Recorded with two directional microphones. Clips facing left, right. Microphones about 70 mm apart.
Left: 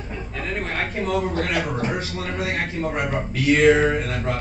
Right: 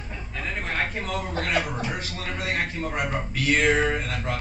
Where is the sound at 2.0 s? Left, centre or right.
Left.